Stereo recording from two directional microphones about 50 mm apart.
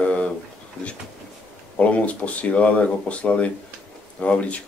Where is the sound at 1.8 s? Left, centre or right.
Left.